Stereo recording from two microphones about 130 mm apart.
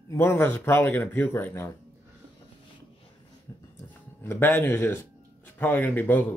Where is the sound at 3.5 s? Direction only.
25° left (ahead or behind).